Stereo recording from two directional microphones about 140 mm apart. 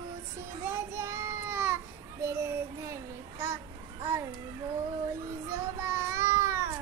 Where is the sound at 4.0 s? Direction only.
20° right (ahead or behind).